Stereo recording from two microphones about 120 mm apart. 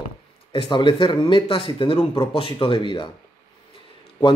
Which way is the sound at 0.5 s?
40° left (ahead or behind).